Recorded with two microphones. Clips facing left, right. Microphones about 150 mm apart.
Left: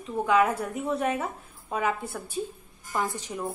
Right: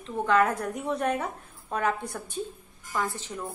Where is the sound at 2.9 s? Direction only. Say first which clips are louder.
Left 1 dB; 15° left (ahead or behind).